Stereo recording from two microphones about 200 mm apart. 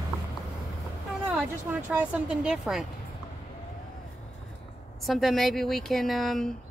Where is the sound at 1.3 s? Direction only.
5° right (ahead or behind).